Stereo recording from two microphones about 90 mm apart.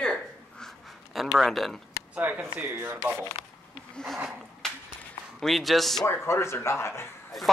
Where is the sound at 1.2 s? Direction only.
Centre (ahead or behind).